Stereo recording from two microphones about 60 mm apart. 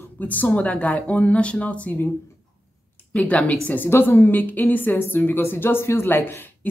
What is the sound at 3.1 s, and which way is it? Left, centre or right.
Speech, left.